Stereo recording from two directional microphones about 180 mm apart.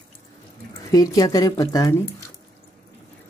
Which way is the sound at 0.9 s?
20° left (ahead or behind).